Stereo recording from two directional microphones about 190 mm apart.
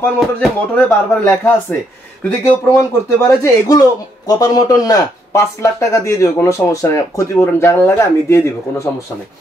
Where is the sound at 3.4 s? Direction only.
20° left (ahead or behind).